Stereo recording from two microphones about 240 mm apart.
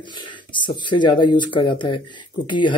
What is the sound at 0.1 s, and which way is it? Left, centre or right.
Speech, centre.